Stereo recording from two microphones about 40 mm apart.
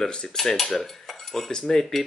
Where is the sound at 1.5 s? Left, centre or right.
Centre.